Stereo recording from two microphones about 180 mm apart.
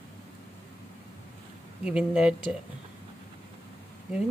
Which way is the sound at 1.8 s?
5° right (ahead or behind).